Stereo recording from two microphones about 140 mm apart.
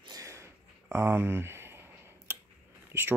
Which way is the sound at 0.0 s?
25° right (ahead or behind).